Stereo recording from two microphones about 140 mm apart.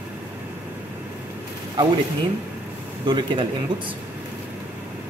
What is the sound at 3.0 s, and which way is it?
Speech, 35° right (ahead or behind).